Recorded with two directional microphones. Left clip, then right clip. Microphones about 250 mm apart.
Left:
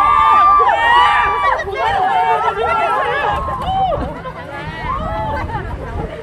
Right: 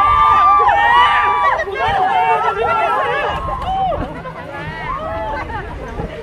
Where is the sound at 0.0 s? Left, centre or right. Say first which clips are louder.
Left 1 dB; left.